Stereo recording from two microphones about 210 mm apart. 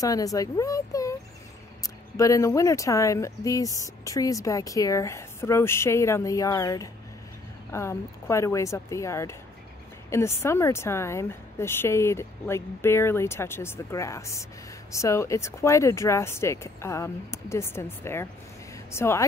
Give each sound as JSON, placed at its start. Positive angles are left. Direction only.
{"t": 0.0, "sound": "speech", "side_deg": 15}